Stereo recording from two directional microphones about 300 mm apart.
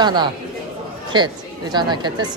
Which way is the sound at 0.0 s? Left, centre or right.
Centre.